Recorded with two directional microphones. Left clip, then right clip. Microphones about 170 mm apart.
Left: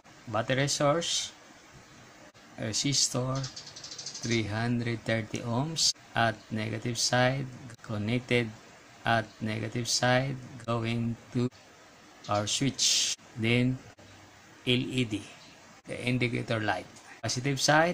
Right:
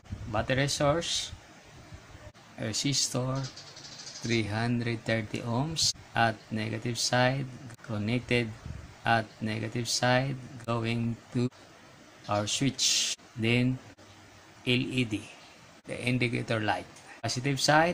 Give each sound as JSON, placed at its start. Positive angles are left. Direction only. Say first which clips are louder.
{"t": 0.3, "sound": "speech", "louder": "even", "side_deg": 0}
{"t": 2.6, "sound": "speech", "louder": "left 1 dB", "side_deg": 0}